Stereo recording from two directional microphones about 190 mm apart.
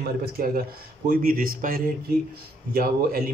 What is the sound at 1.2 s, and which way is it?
Speech, 45° right (ahead or behind).